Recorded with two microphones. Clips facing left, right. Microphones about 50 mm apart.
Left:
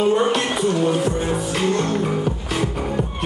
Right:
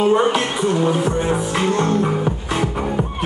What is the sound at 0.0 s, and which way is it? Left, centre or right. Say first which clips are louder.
Music: right 2 dB; centre.